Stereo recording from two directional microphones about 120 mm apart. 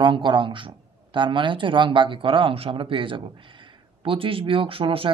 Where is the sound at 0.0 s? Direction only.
40° right (ahead or behind).